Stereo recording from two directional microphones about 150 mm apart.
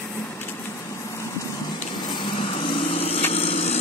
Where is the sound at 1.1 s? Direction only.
20° left (ahead or behind).